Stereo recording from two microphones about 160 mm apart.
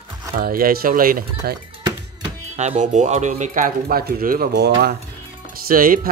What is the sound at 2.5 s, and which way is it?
Speech, 45° right (ahead or behind).